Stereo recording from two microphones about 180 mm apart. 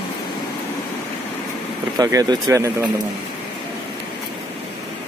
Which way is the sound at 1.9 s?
20° right (ahead or behind).